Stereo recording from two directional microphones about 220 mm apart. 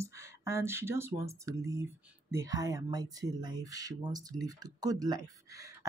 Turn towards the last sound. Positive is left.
turn(degrees=-15)  # may be behind; listen again after turning